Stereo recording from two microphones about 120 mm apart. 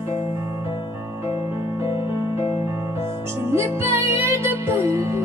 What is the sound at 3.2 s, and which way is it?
Music, 20° right (ahead or behind).